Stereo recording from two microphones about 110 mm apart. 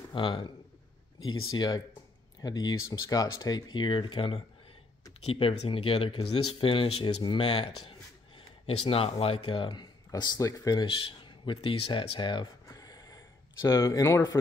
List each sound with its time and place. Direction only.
0.1 s speech: 50° left (ahead or behind)
2.4 s speech: 35° left (ahead or behind)
5.2 s speech: 60° left (ahead or behind)
7.2 s speech: 50° left (ahead or behind); by 10.9 s 35° left (ahead or behind)
10.9 s speech: 50° left (ahead or behind)
12.6 s a sound: 35° left (ahead or behind)
13.7 s speech: 30° left (ahead or behind)